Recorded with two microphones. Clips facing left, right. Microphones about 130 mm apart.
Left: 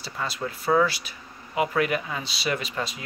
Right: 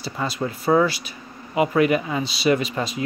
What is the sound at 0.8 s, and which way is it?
Speech, 5° right (ahead or behind).